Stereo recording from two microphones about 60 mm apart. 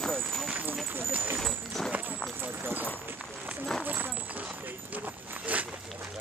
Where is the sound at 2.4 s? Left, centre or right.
Right.